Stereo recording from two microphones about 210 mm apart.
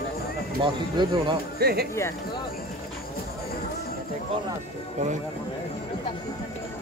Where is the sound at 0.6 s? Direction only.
20° right (ahead or behind).